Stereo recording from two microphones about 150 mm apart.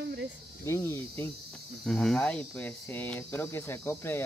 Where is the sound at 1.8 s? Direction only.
5° left (ahead or behind).